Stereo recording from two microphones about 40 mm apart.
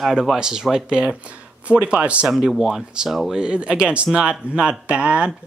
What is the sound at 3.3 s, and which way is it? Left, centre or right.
Speech, right.